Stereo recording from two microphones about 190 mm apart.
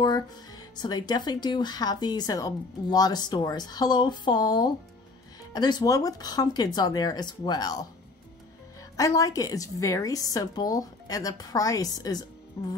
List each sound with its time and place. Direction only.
0.7 s speech: 20° left (ahead or behind)
8.9 s speech: 20° left (ahead or behind)